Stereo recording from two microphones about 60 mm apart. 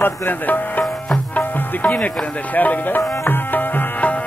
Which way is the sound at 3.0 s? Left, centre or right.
Left.